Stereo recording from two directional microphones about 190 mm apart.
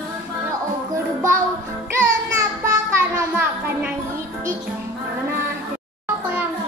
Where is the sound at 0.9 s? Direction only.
15° right (ahead or behind).